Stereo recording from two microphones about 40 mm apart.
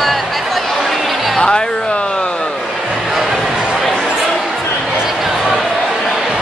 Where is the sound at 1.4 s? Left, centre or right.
Left.